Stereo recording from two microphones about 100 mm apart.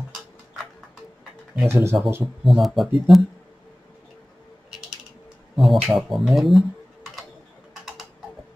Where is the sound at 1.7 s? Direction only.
25° right (ahead or behind).